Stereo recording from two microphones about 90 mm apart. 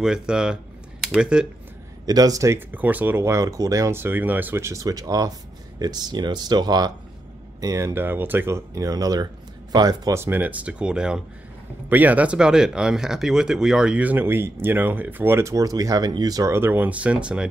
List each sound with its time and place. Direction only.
0.0 s speech: 10° right (ahead or behind)
2.0 s speech: 45° right (ahead or behind)
2.7 s speech: 20° right (ahead or behind); by 4.0 s 35° right (ahead or behind)
4.0 s speech: 20° right (ahead or behind); by 6.9 s 50° right (ahead or behind)
7.6 s speech: 35° right (ahead or behind)
10.1 s speech: 25° right (ahead or behind); by 16.4 s 45° right (ahead or behind)
16.4 s speech: 25° right (ahead or behind); by 17.5 s 10° right (ahead or behind)